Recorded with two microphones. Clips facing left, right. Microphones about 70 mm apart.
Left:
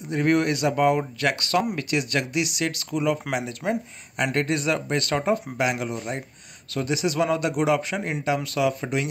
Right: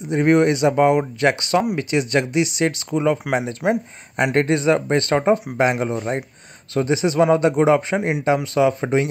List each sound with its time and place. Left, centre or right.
0.1 s speech: right